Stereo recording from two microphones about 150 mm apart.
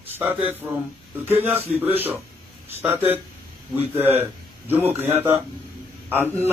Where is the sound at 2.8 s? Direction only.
15° right (ahead or behind).